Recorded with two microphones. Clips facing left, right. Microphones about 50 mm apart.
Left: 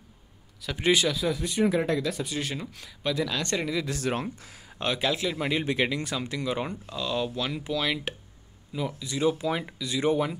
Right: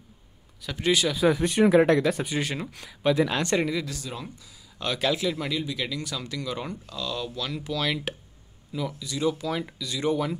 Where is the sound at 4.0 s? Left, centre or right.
Left.